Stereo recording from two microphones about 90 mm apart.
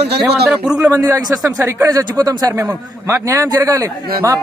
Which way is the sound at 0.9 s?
40° right (ahead or behind).